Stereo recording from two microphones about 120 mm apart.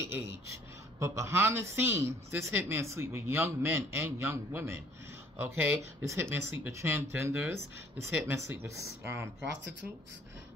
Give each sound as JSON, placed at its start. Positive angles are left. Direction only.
{"t": 0.0, "sound": "speech", "side_deg": -25}